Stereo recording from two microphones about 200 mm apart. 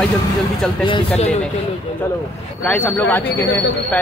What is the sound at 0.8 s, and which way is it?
Speech, 30° left (ahead or behind).